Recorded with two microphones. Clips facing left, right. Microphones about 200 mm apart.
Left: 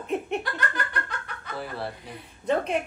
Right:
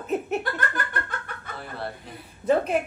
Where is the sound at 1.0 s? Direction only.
50° right (ahead or behind).